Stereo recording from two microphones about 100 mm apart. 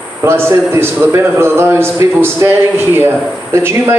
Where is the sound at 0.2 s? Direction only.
25° right (ahead or behind).